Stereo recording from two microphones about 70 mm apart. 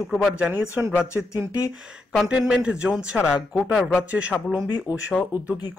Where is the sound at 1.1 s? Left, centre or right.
Left.